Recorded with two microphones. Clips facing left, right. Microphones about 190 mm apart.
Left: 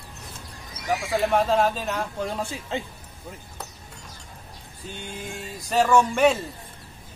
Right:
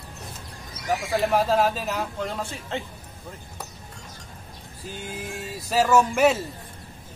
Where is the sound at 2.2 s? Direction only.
10° left (ahead or behind).